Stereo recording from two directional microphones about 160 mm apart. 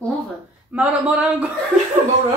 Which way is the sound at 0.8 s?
10° right (ahead or behind).